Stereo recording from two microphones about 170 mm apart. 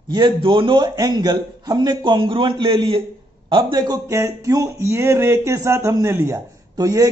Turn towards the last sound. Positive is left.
turn(degrees=-20)  # may be behind; listen again after turning